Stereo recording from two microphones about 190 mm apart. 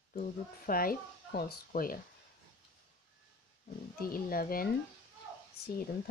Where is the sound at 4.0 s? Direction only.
50° left (ahead or behind).